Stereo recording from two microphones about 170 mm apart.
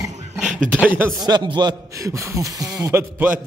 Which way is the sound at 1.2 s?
25° right (ahead or behind).